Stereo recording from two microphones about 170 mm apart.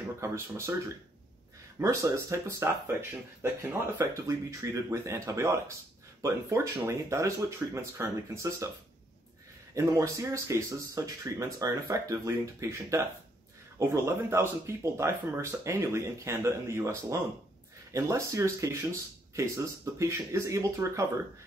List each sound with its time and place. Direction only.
0.2 s speech: 15° right (ahead or behind)
9.8 s speech: 20° right (ahead or behind)